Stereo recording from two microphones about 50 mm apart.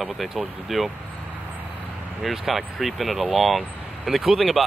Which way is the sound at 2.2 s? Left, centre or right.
Centre.